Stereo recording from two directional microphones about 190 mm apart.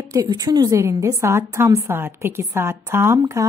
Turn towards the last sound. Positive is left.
turn(degrees=-15)  # may be behind; listen again after turning